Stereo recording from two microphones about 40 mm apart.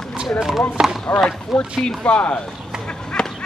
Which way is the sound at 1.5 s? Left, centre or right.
Centre.